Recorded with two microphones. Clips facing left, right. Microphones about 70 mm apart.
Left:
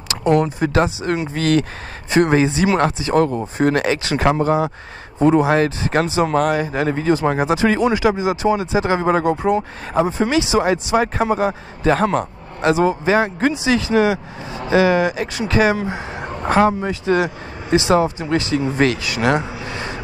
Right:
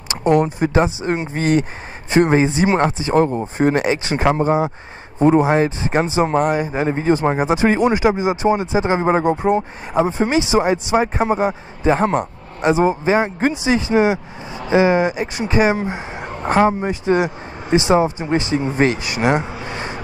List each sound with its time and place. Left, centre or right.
0.6 s speech: right